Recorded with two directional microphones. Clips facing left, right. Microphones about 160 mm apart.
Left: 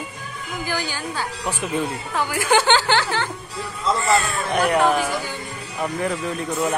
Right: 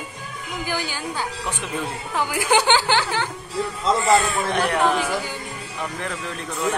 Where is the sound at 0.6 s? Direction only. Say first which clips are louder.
Even; 15° right (ahead or behind).